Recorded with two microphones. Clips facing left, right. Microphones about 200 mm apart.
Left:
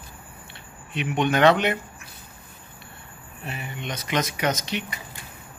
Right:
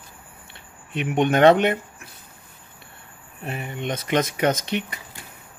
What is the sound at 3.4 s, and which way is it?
Speech, 50° right (ahead or behind).